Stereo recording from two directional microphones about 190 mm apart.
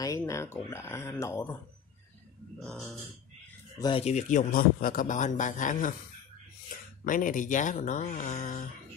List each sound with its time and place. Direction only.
0.0 s speech: 15° left (ahead or behind)
2.6 s speech: centre (ahead or behind)
3.8 s a man's voice: 30° left (ahead or behind)
7.1 s speech: 45° left (ahead or behind)